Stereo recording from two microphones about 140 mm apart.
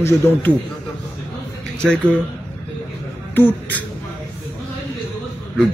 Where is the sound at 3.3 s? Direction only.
15° left (ahead or behind).